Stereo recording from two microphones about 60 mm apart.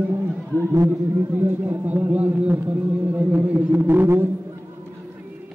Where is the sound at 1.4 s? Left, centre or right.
Right.